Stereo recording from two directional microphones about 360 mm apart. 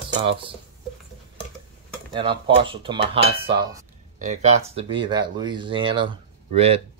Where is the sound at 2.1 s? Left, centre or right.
Centre.